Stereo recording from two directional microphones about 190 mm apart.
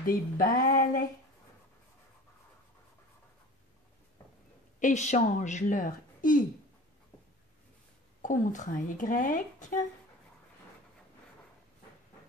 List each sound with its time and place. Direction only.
0.0 s speech: 45° left (ahead or behind)
4.7 s a woman's voice: 40° left (ahead or behind)
8.2 s speech: 40° left (ahead or behind)